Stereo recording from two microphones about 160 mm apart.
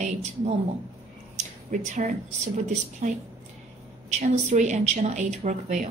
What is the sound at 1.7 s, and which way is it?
A woman's voice, 50° right (ahead or behind).